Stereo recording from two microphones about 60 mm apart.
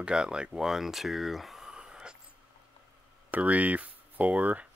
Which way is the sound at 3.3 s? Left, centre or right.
Right.